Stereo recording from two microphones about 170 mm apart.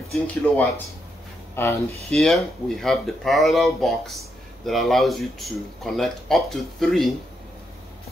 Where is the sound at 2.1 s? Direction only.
5° left (ahead or behind).